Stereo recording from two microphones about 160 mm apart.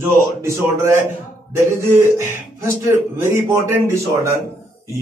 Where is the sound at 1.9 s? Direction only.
15° right (ahead or behind).